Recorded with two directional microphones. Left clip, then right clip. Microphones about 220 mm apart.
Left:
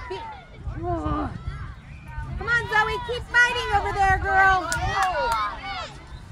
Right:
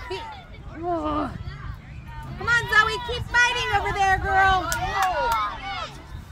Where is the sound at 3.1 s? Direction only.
30° right (ahead or behind).